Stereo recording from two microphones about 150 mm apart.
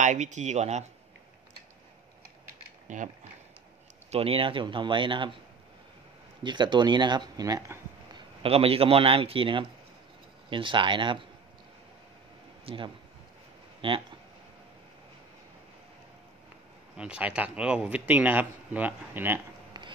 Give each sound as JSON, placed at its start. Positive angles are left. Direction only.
{"t": 0.0, "sound": "speech", "side_deg": -55}
{"t": 4.1, "sound": "speech", "side_deg": -40}
{"t": 6.4, "sound": "speech", "side_deg": -30}
{"t": 8.1, "sound": "a man's voice", "side_deg": -40}
{"t": 12.6, "sound": "speech", "side_deg": -35}
{"t": 16.9, "sound": "speech", "side_deg": -5}
{"t": 19.7, "sound": "a sound", "side_deg": -30}